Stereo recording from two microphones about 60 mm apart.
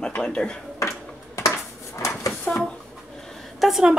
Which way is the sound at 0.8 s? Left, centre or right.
Left.